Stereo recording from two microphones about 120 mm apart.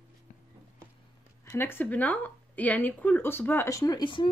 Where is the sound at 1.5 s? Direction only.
20° left (ahead or behind); by 4.3 s 40° left (ahead or behind).